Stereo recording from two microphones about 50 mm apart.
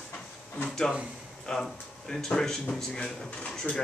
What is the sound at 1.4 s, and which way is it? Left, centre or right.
Speech, centre.